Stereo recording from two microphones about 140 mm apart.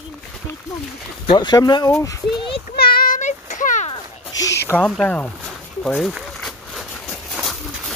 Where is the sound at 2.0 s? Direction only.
35° left (ahead or behind).